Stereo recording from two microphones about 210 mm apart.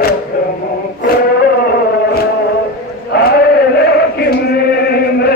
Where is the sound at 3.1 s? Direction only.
50° left (ahead or behind).